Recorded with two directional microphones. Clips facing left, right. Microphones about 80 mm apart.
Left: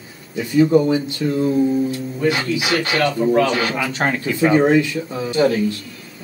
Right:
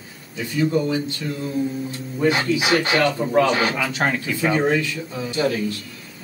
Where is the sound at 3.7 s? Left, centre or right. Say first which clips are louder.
Left 2 dB; centre.